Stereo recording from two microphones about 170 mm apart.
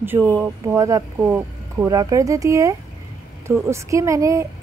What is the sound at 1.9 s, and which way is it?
A woman's voice, 20° right (ahead or behind).